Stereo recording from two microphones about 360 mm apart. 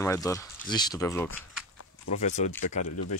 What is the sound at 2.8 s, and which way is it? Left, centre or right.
Speech, left.